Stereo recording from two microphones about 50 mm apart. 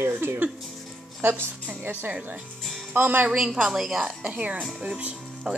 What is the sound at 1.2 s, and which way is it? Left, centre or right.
Speech, right.